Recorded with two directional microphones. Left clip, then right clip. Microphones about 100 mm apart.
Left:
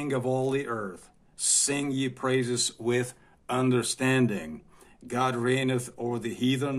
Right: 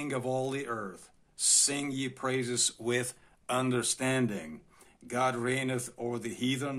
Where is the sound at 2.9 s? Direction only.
15° right (ahead or behind).